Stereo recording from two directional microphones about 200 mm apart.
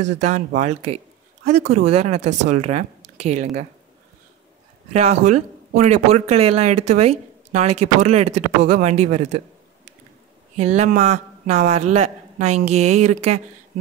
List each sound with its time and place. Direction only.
0.0 s speech: 35° right (ahead or behind)
4.9 s speech: 35° right (ahead or behind)
10.6 s speech: 35° right (ahead or behind)